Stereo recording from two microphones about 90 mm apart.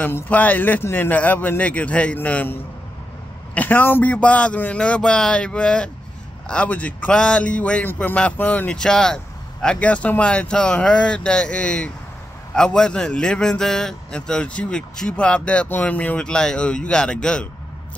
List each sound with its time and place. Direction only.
0.0 s a man's voice: 20° left (ahead or behind)